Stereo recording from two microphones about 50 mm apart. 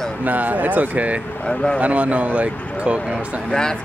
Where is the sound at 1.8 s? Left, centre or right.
Right.